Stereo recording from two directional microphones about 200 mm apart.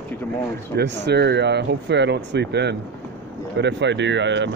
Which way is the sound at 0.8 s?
60° right (ahead or behind).